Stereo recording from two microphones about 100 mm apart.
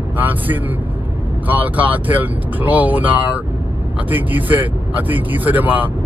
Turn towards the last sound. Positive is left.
turn(degrees=-15)  # may be behind; listen again after turning